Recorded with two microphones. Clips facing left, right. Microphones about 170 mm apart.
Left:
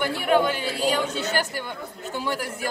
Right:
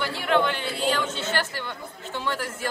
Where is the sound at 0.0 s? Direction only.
50° left (ahead or behind).